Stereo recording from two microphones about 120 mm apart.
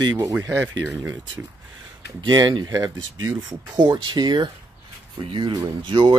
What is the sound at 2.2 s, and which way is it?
Speech, 35° right (ahead or behind).